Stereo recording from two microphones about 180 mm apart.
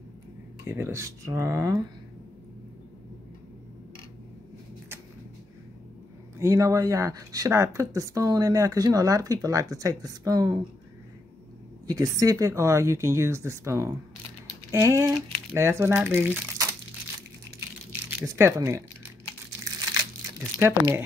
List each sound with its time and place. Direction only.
0.7 s speech: 15° right (ahead or behind)
6.4 s speech: 15° right (ahead or behind)
11.9 s speech: 20° right (ahead or behind)
18.2 s speech: 15° right (ahead or behind)
19.6 s crumpling: 20° right (ahead or behind)